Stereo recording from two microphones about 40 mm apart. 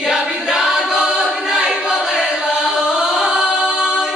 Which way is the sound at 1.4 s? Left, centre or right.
Centre.